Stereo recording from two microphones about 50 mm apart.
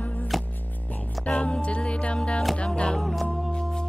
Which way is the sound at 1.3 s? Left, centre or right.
Left.